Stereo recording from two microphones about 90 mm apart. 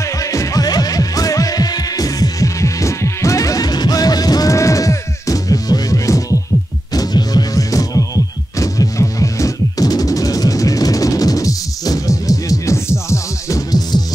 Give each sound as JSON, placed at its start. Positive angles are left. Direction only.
{"t": 0.2, "sound": "music", "side_deg": 35}